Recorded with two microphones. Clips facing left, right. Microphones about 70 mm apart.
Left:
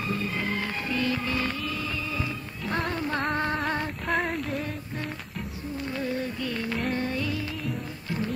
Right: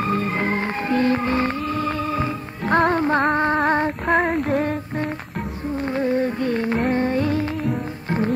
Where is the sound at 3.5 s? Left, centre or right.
Right.